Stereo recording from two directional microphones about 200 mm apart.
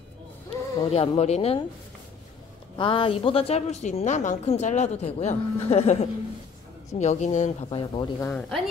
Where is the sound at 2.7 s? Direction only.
25° left (ahead or behind).